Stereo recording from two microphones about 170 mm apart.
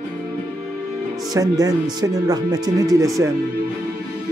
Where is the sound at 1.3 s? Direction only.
20° right (ahead or behind).